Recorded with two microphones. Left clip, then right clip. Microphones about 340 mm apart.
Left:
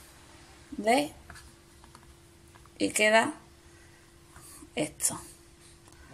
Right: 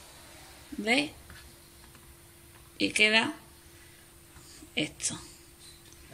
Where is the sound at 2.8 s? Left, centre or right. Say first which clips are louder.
Left 1 dB; centre.